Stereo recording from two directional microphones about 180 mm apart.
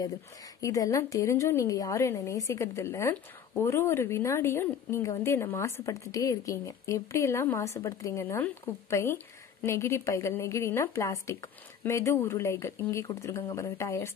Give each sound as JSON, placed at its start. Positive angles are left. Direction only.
{"t": 0.6, "sound": "a woman's voice", "side_deg": 20}